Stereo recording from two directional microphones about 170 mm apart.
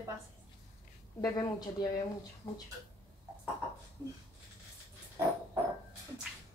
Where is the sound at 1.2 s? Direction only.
25° left (ahead or behind).